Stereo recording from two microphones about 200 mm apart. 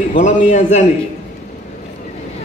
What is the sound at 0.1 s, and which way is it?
Speech, 35° left (ahead or behind).